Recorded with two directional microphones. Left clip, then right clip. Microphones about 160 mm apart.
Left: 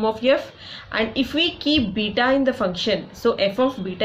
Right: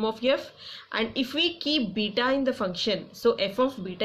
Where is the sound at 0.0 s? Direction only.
25° right (ahead or behind).